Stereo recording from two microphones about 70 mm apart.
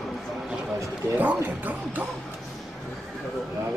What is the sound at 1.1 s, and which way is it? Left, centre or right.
Speech, right.